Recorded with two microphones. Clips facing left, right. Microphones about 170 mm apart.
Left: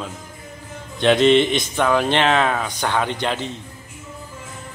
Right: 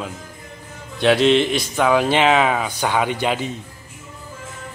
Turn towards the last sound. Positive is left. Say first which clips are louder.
# right 2 dB
turn(degrees=-10)  # may be behind; listen again after turning